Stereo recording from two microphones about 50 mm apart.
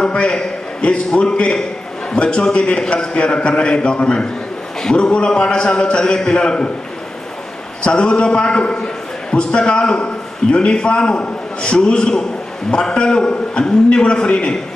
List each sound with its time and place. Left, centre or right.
0.0 s a man's voice: centre
7.8 s a man's voice: centre